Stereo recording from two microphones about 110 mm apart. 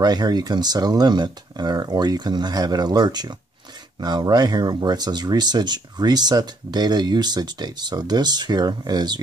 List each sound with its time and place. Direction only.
0.0 s speech: 40° right (ahead or behind)